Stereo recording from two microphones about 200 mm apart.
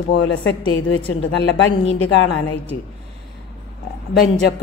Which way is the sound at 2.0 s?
65° left (ahead or behind).